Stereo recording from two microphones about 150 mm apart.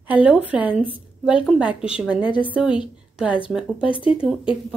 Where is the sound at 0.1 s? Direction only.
10° right (ahead or behind).